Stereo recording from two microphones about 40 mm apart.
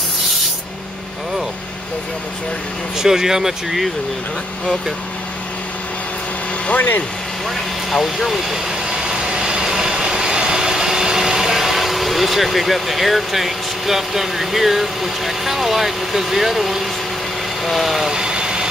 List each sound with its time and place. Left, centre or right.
3.0 s speech: centre
6.7 s speech: left
7.9 s speech: centre
8.9 s vehicle: centre
17.6 s speech: centre
18.1 s vehicle: centre